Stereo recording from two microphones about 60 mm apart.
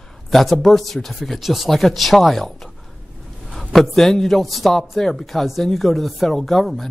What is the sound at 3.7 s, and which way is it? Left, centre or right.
A man's voice, centre.